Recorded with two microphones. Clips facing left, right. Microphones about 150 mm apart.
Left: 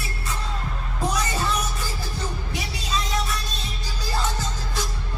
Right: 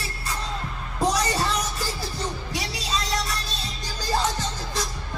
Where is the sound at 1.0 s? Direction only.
35° right (ahead or behind).